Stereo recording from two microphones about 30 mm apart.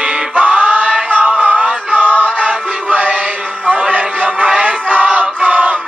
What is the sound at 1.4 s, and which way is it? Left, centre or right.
Music, right.